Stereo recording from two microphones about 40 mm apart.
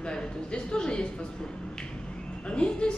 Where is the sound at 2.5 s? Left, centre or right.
Left.